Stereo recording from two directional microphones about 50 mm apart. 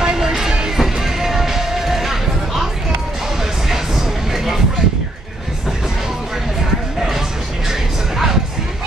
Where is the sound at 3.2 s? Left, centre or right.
Centre.